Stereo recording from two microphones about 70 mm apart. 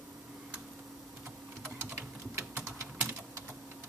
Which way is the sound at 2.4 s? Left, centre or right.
Right.